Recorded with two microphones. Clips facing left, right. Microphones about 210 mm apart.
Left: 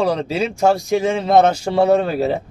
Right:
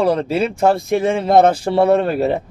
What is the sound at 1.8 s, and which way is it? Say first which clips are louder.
Speech: even; 60° right (ahead or behind).